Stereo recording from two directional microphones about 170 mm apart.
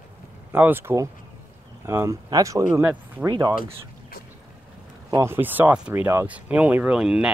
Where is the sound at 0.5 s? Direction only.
10° right (ahead or behind).